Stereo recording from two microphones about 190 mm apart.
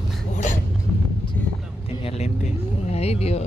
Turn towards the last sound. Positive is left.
turn(degrees=35)  # may be behind; listen again after turning